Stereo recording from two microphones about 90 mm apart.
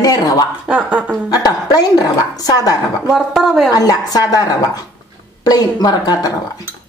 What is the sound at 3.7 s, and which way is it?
Speech, 45° left (ahead or behind).